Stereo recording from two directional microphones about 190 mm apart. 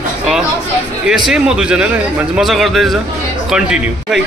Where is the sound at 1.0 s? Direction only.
5° right (ahead or behind).